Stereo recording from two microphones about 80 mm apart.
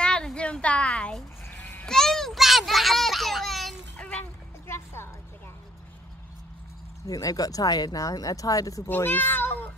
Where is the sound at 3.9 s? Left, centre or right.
Centre.